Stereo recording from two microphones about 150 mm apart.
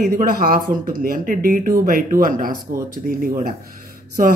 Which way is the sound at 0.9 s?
65° right (ahead or behind).